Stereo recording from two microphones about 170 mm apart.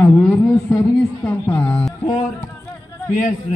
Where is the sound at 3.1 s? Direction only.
50° left (ahead or behind).